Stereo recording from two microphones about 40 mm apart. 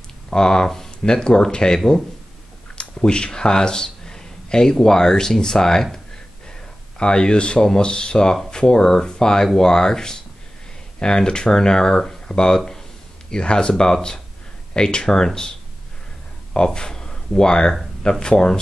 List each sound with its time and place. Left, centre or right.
0.3 s speech: centre
7.0 s speech: left
13.3 s speech: left
16.5 s a sound: centre
17.4 s speech: centre